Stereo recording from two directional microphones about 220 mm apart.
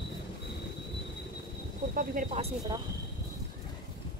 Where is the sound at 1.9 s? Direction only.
35° right (ahead or behind).